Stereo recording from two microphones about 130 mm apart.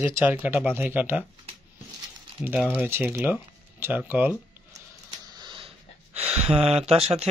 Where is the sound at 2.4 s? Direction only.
10° right (ahead or behind).